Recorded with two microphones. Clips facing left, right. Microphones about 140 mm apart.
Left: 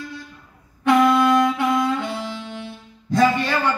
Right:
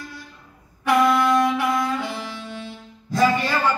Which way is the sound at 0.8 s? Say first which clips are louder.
Left 2 dB; 20° left (ahead or behind).